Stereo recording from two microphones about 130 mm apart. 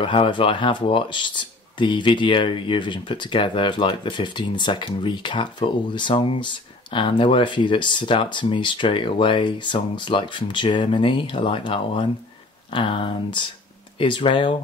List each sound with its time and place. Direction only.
0.0 s speech: 40° left (ahead or behind)